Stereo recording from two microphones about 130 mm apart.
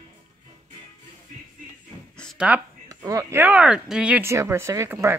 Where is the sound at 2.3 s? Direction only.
10° right (ahead or behind).